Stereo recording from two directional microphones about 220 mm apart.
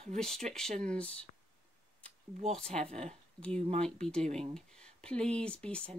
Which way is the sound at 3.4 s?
5° left (ahead or behind).